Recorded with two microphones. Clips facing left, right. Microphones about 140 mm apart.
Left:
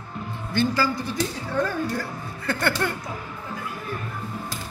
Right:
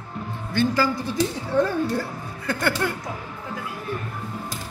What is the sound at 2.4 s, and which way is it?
Speech, 10° right (ahead or behind).